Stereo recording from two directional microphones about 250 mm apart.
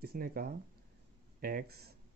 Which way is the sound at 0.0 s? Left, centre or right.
Right.